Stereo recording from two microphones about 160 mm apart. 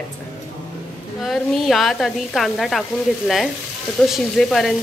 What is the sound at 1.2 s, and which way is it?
Speech, centre (ahead or behind).